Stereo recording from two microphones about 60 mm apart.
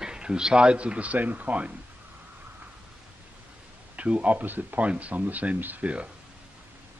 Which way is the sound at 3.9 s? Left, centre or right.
Right.